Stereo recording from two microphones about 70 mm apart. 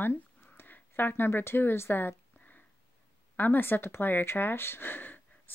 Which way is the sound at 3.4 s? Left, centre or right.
Left.